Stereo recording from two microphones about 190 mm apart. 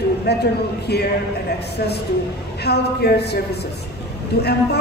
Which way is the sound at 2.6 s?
60° left (ahead or behind).